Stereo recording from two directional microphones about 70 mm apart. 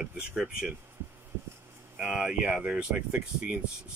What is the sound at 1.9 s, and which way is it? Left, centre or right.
Speech, centre.